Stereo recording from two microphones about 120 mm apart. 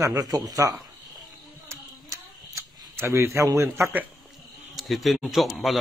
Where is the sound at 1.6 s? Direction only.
25° right (ahead or behind).